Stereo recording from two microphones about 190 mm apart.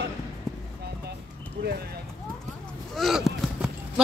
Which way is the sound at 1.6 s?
55° right (ahead or behind).